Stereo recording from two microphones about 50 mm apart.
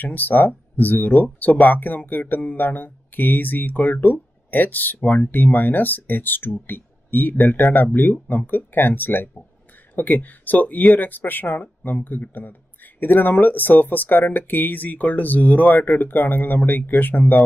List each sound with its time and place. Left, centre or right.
0.0 s speech: left